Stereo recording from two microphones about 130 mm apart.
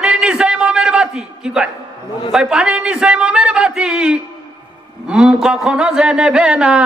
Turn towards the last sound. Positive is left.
turn(degrees=-10)  # may be behind; listen again after turning